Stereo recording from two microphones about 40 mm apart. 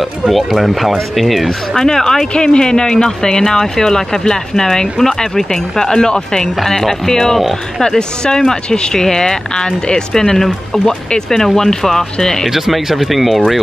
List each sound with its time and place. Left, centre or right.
0.3 s speech: centre
1.8 s speech: centre
12.5 s speech: centre